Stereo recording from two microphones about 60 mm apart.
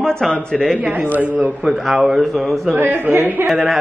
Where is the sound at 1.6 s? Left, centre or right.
Centre.